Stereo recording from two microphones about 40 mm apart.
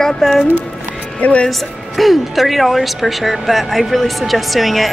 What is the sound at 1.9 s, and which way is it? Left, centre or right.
Speech, centre.